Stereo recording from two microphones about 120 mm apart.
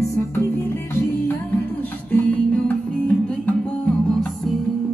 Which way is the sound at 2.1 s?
10° left (ahead or behind).